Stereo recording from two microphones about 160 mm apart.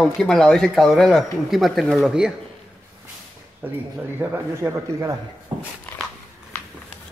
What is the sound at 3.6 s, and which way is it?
A man's voice, 10° right (ahead or behind).